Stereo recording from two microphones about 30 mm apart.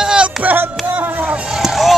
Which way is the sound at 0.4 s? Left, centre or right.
Right.